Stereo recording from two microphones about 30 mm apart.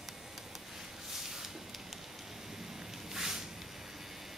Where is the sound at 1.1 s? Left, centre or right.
Centre.